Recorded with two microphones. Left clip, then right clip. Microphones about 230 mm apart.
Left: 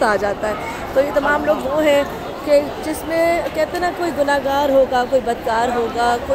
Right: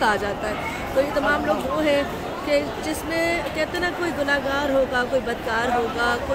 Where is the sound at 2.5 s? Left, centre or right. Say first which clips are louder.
Left 7 dB; centre.